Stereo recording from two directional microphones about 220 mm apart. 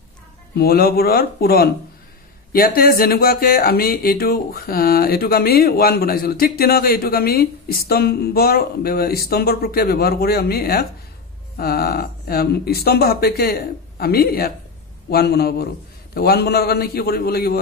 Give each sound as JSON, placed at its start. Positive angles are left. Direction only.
{"t": 0.6, "sound": "speech", "side_deg": 45}